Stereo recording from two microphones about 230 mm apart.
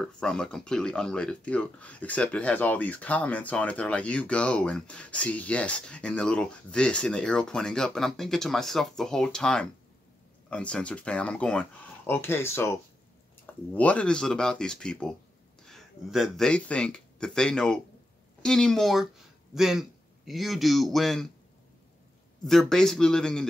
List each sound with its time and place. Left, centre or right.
0.0 s speech: centre
13.7 s a man's voice: centre
22.5 s speech: centre